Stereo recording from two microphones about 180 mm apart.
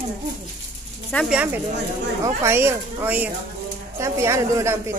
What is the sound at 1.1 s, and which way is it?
A woman's voice, 5° right (ahead or behind).